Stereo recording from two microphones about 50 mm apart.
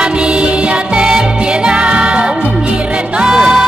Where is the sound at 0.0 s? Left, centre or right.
Right.